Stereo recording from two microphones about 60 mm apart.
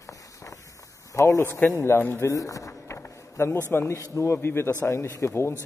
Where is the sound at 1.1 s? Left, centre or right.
Left.